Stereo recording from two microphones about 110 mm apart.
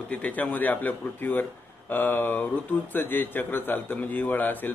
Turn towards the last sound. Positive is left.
turn(degrees=15)  # may be behind; listen again after turning